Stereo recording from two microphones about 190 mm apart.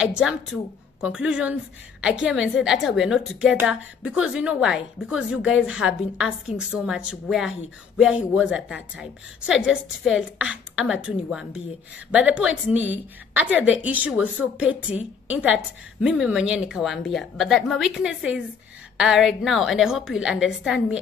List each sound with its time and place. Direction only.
0.1 s a woman's voice: 5° right (ahead or behind)